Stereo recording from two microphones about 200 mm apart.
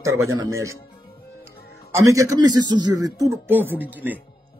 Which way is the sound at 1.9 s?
15° right (ahead or behind).